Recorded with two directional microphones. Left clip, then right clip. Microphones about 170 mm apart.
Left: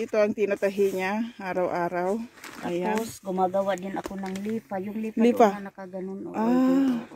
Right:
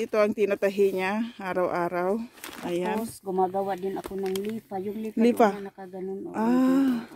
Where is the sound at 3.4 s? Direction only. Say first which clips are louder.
Left 2 dB; 40° left (ahead or behind).